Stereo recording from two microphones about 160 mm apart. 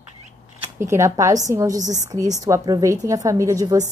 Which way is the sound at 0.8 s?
15° right (ahead or behind).